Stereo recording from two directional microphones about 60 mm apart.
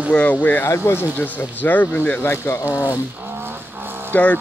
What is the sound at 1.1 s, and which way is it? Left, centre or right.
Speech, left.